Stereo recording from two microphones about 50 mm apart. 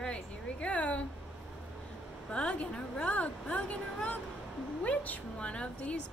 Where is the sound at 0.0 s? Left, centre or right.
Left.